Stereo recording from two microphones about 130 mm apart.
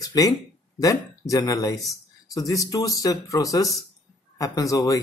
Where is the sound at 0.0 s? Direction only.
30° left (ahead or behind).